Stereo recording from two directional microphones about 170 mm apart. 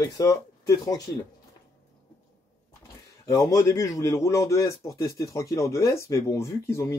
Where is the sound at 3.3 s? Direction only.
20° left (ahead or behind).